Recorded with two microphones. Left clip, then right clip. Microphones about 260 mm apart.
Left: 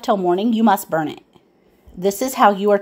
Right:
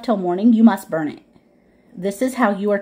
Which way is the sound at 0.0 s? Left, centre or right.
Left.